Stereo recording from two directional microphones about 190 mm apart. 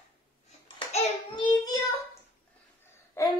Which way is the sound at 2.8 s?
15° left (ahead or behind).